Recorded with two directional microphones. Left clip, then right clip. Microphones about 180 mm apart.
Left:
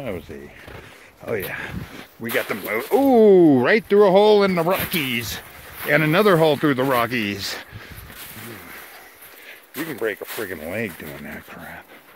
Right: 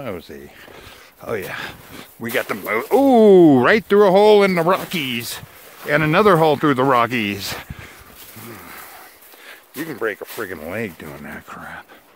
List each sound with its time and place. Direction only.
1.2 s speech: 20° right (ahead or behind)
2.6 s speech: 45° right (ahead or behind)
4.9 s speech: 20° right (ahead or behind); by 7.6 s 40° right (ahead or behind)
9.9 s speech: 25° right (ahead or behind)